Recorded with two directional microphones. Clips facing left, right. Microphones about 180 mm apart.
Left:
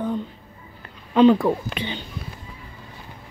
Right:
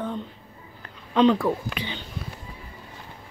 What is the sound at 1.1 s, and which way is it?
Speech, 10° left (ahead or behind).